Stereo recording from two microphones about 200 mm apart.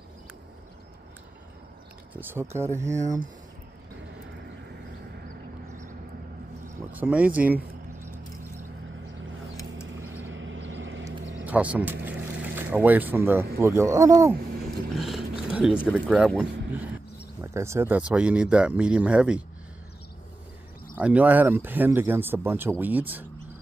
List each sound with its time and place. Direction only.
2.1 s speech: 10° right (ahead or behind)
6.9 s speech: 5° right (ahead or behind)
9.9 s vehicle: 10° right (ahead or behind)
10.3 s a sound: 70° right (ahead or behind)
11.4 s speech: 5° right (ahead or behind)
15.0 s speech: centre (ahead or behind)
20.9 s speech: 5° right (ahead or behind)